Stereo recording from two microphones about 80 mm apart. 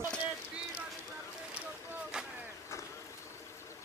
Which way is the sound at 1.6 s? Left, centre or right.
Centre.